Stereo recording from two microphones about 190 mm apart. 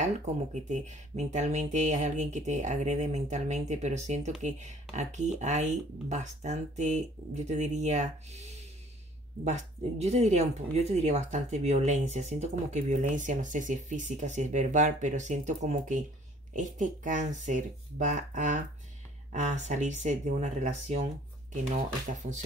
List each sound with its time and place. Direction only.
0.0 s speech: 40° right (ahead or behind)